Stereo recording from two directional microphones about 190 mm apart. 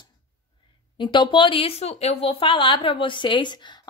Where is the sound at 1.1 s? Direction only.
25° left (ahead or behind).